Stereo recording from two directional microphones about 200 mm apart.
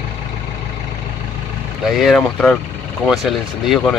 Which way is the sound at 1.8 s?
Centre (ahead or behind).